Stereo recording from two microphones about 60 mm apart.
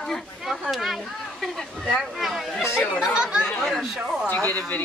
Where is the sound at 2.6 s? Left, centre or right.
Left.